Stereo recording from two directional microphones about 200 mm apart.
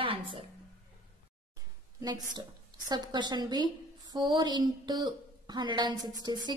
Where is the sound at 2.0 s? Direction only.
20° right (ahead or behind).